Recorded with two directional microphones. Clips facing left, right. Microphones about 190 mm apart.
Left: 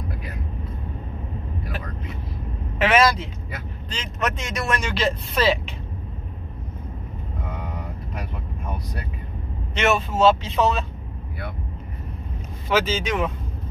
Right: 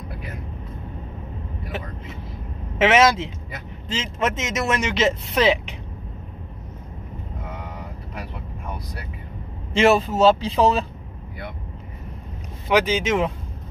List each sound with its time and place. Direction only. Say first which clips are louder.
2.8 s speech: right 2 dB; 20° right (ahead or behind)
9.8 s speech: right 4 dB; 35° right (ahead or behind)
12.6 s speech: right 3 dB; 15° right (ahead or behind)